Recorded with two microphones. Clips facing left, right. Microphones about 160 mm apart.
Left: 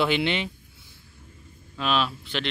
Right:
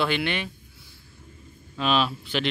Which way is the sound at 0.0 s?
20° left (ahead or behind).